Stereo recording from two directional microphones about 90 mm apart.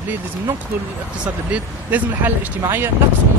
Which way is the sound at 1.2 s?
15° right (ahead or behind).